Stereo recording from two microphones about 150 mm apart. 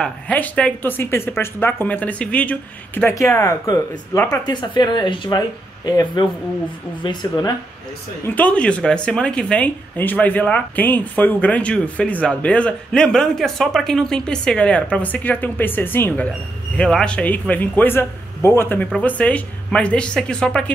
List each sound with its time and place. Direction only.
0.0 s speech: 10° left (ahead or behind)
4.5 s speech: 30° left (ahead or behind)
8.4 s speech: 10° left (ahead or behind)